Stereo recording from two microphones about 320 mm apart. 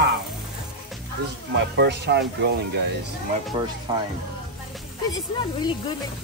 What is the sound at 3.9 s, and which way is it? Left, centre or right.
Speech, centre.